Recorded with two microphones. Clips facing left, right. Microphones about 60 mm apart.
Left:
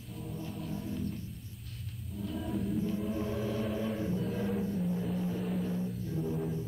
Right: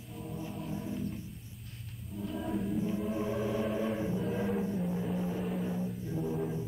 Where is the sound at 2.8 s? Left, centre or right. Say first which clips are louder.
Right 1 dB; centre.